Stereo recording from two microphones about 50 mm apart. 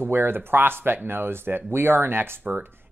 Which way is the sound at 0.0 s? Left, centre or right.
Right.